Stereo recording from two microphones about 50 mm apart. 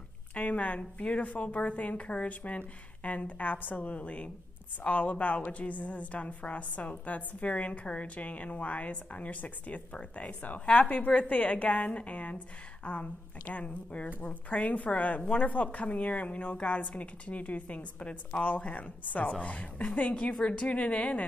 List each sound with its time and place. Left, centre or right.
0.3 s a woman's voice: left